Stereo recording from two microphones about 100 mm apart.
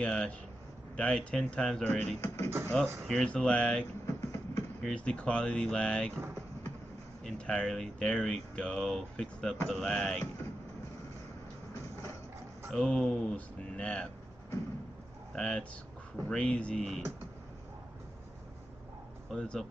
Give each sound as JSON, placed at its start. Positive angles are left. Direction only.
{"t": 0.0, "sound": "speech", "side_deg": 10}
{"t": 2.2, "sound": "speech", "side_deg": 30}
{"t": 2.7, "sound": "speech", "side_deg": 10}
{"t": 4.0, "sound": "vehicle", "side_deg": 25}
{"t": 4.8, "sound": "speech", "side_deg": 10}
{"t": 7.2, "sound": "speech", "side_deg": 10}
{"t": 12.7, "sound": "speech", "side_deg": 5}
{"t": 15.3, "sound": "speech", "side_deg": 10}
{"t": 19.3, "sound": "speech", "side_deg": 10}